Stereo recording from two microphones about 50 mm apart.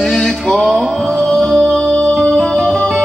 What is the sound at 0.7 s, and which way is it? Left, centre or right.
Music, centre.